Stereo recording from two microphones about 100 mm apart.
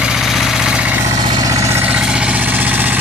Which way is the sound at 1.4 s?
30° right (ahead or behind).